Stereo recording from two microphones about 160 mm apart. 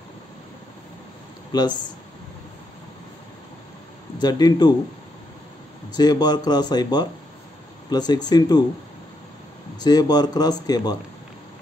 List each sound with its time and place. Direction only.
1.5 s speech: 25° left (ahead or behind)
4.2 s speech: 25° left (ahead or behind)
5.9 s speech: 25° left (ahead or behind)
9.8 s speech: 25° left (ahead or behind)